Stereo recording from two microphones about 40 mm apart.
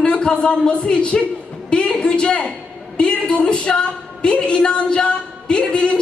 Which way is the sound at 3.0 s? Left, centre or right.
Left.